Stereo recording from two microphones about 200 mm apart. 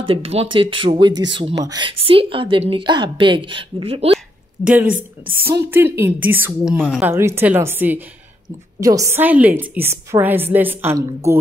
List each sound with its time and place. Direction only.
0.0 s a woman's voice: 30° right (ahead or behind)
4.6 s speech: 35° left (ahead or behind)
5.7 s a woman's voice: 10° right (ahead or behind)